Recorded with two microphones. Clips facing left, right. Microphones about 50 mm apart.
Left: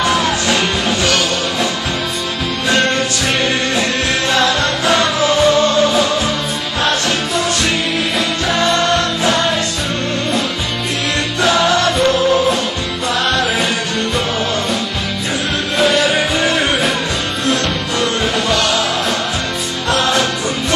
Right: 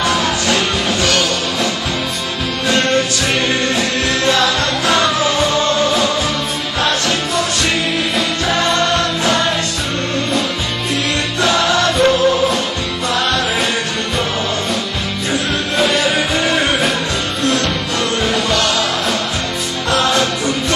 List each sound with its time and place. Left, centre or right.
0.0 s music: centre
0.8 s music: centre
4.3 s music: left
4.6 s music: centre
6.8 s music: left
8.5 s music: centre
11.7 s music: centre
15.8 s music: centre
18.2 s music: centre